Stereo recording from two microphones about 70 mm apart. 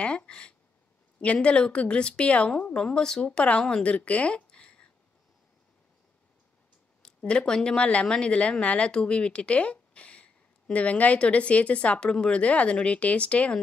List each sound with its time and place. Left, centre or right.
0.0 s speech: centre
7.0 s speech: centre